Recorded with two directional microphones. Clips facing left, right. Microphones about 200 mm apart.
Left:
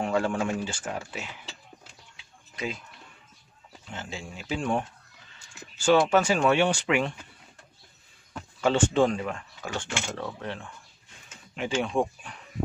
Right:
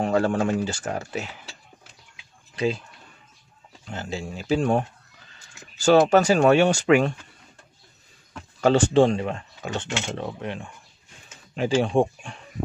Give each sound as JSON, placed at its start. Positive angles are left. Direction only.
{"t": 0.0, "sound": "speech", "side_deg": -40}
{"t": 2.5, "sound": "speech", "side_deg": -30}
{"t": 3.9, "sound": "speech", "side_deg": -40}
{"t": 8.5, "sound": "speech", "side_deg": -40}
{"t": 11.5, "sound": "speech", "side_deg": -35}